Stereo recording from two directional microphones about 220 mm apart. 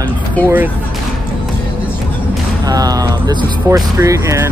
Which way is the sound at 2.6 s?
15° right (ahead or behind).